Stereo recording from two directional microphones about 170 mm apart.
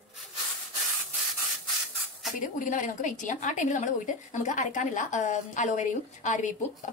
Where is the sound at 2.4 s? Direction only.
50° left (ahead or behind).